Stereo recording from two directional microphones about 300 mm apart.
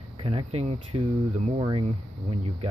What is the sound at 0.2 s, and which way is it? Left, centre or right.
Speech, centre.